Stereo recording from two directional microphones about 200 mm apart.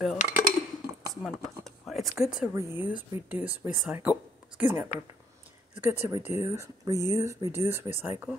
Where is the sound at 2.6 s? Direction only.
10° right (ahead or behind).